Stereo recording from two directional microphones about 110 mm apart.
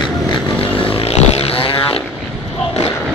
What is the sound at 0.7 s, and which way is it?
Vehicle, 60° left (ahead or behind).